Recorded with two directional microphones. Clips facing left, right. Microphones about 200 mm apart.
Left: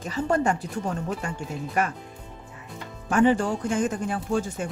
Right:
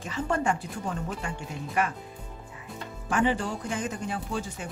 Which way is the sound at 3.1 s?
45° left (ahead or behind).